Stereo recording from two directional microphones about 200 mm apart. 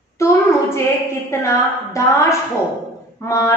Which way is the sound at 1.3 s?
15° left (ahead or behind).